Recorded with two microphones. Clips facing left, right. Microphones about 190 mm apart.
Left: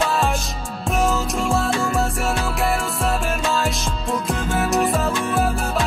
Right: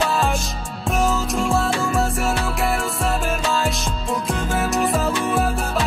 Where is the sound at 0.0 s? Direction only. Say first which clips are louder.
Even; centre (ahead or behind).